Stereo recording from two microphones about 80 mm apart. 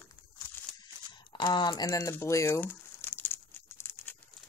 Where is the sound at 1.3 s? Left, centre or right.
Left.